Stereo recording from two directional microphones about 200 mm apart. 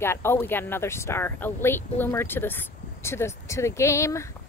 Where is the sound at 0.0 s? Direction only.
10° left (ahead or behind).